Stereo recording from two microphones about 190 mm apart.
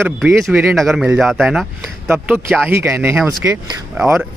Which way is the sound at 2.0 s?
10° right (ahead or behind).